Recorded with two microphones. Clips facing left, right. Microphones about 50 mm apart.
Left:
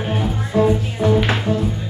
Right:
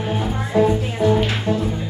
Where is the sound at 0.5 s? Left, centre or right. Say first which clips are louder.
Even; centre.